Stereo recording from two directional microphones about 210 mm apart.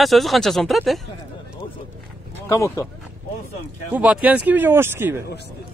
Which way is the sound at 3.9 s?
5° right (ahead or behind).